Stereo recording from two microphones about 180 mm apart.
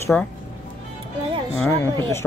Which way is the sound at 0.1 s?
5° left (ahead or behind).